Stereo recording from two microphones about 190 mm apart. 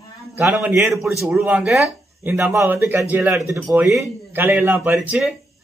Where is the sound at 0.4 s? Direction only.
10° right (ahead or behind).